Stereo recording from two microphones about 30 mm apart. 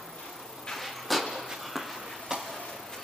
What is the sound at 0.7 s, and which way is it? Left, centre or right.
Vehicle, centre.